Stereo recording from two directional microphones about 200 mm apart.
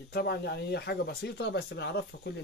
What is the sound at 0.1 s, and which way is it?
Speech, 55° left (ahead or behind).